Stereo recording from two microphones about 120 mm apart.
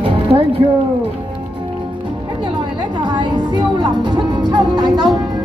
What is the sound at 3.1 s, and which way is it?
Music, 40° right (ahead or behind).